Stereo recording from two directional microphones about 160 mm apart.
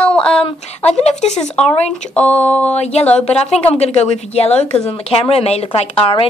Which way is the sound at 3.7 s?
40° left (ahead or behind).